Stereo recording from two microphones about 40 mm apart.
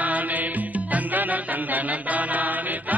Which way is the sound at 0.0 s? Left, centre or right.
Right.